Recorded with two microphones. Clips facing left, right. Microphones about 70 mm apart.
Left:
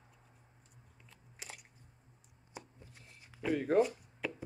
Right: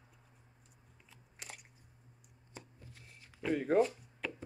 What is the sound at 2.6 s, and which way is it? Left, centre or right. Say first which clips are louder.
Chopping: left 3 dB; centre.